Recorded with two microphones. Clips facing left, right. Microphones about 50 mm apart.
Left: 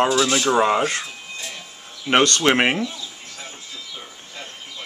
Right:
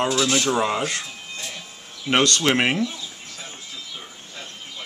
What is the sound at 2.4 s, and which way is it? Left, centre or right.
Speech, centre.